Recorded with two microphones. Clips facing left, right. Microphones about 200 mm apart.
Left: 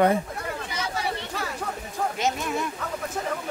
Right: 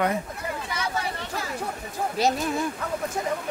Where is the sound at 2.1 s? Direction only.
35° right (ahead or behind).